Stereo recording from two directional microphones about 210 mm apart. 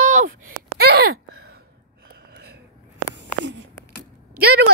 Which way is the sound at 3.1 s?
60° right (ahead or behind).